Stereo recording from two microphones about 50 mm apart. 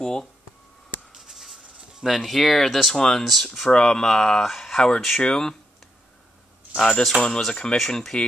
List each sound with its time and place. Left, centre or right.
0.0 s speech: centre
1.1 s writing: centre
3.0 s speech: centre
6.8 s speech: centre